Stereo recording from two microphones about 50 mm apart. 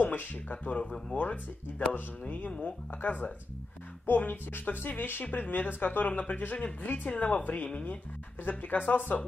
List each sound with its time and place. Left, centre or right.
0.0 s speech: left